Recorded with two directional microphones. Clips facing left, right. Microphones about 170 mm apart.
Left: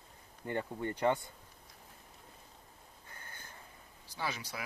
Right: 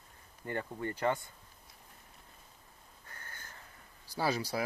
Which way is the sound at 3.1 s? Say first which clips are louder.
Right 1 dB; 10° left (ahead or behind).